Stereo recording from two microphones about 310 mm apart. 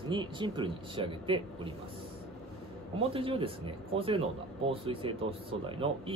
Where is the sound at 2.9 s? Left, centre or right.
Centre.